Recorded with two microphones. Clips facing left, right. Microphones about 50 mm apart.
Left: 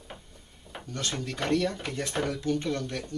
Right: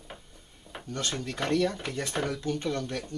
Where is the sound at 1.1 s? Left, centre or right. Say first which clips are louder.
Left 1 dB; centre.